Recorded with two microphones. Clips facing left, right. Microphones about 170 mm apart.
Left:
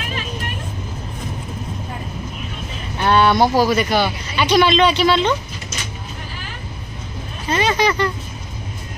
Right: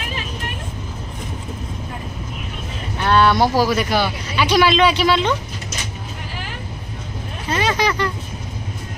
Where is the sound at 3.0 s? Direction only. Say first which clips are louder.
Left 1 dB; centre (ahead or behind).